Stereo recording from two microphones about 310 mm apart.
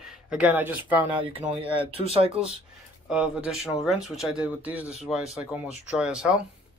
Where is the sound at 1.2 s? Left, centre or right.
Centre.